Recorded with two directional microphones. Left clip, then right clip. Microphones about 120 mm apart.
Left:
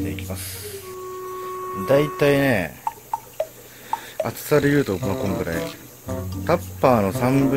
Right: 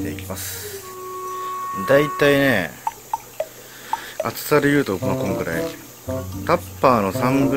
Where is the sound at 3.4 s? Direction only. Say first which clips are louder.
Left 3 dB; centre (ahead or behind).